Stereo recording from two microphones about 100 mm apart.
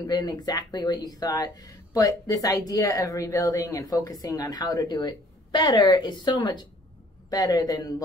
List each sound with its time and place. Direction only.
0.0 s speech: 40° left (ahead or behind)